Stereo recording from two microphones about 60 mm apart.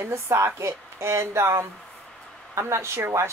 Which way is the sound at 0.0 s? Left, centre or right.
Right.